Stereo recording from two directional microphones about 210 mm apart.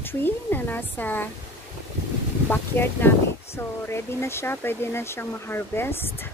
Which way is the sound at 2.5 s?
10° left (ahead or behind).